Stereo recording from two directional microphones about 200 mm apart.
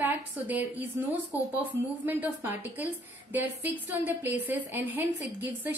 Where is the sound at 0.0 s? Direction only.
10° right (ahead or behind).